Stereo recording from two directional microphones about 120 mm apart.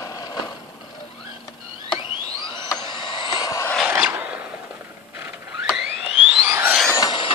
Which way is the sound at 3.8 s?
10° right (ahead or behind).